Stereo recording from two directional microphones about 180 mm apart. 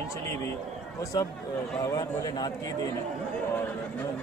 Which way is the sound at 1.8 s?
20° left (ahead or behind).